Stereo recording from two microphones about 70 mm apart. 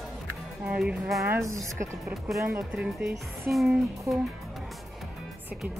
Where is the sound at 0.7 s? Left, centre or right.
Centre.